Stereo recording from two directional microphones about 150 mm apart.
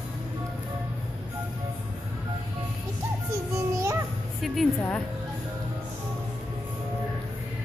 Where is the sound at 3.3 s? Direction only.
20° right (ahead or behind).